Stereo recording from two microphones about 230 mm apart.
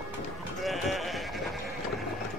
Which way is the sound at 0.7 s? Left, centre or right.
Centre.